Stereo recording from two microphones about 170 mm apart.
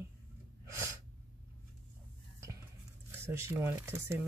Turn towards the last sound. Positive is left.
turn(degrees=-15)  # may be behind; listen again after turning